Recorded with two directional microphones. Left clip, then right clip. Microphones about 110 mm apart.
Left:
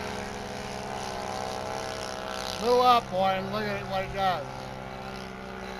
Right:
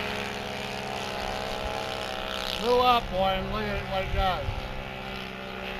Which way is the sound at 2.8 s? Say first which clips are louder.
Left 2 dB; 50° left (ahead or behind).